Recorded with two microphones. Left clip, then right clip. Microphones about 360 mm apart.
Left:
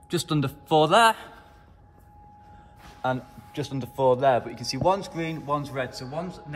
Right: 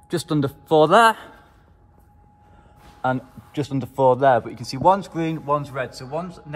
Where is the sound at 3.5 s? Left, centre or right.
Centre.